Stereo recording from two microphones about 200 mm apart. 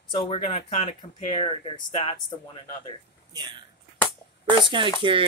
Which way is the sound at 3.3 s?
20° right (ahead or behind).